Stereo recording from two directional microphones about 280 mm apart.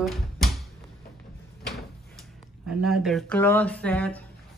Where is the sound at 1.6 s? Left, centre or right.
Centre.